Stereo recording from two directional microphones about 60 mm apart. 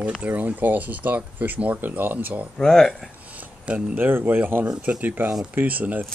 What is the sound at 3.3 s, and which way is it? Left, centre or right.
Speech, right.